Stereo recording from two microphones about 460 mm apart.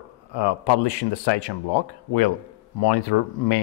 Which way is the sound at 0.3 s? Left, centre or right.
Left.